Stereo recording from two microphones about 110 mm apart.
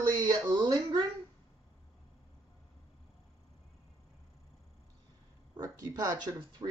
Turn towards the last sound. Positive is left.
turn(degrees=-40)  # may be behind; listen again after turning